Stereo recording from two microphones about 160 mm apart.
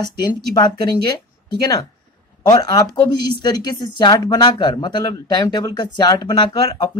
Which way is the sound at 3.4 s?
25° left (ahead or behind).